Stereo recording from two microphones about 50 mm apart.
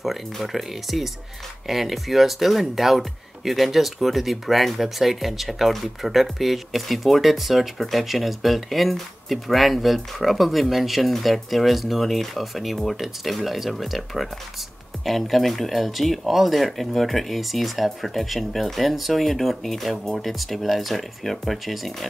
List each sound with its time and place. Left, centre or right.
0.0 s speech: centre